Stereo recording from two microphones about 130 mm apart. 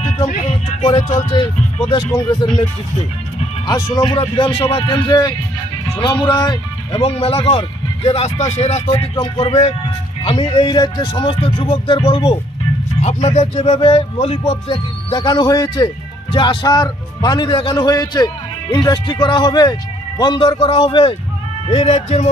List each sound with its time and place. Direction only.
1.1 s speech: 35° left (ahead or behind)
3.6 s a man's voice: 30° left (ahead or behind)
7.0 s speech: 50° left (ahead or behind)
9.1 s speech: 40° left (ahead or behind)
9.5 s speech: 55° left (ahead or behind)
10.2 s speech: 40° left (ahead or behind)
13.0 s speech: 60° left (ahead or behind)
13.7 s speech: 45° left (ahead or behind)
21.6 s speech: 50° left (ahead or behind)